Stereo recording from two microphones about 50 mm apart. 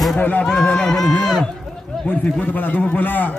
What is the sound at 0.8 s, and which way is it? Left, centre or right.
Speech, centre.